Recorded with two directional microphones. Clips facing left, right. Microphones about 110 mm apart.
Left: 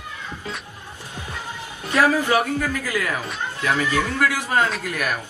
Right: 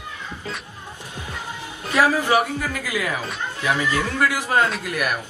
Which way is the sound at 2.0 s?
15° right (ahead or behind).